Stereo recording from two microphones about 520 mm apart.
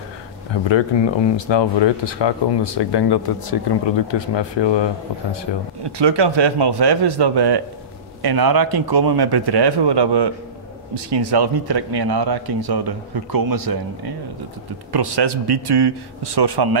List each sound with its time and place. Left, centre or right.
0.7 s speech: left
5.9 s speech: right